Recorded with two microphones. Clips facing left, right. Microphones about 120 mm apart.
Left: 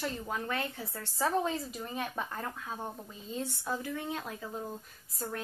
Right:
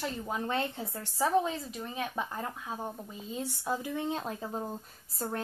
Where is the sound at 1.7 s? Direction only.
Centre (ahead or behind).